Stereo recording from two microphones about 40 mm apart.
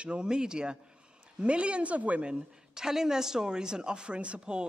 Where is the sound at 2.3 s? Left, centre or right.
Centre.